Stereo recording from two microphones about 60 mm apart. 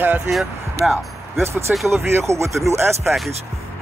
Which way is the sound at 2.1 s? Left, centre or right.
Right.